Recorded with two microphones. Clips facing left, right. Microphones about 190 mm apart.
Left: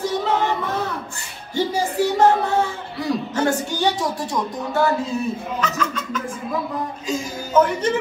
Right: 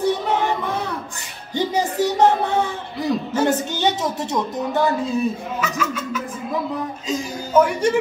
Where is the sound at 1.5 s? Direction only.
15° right (ahead or behind).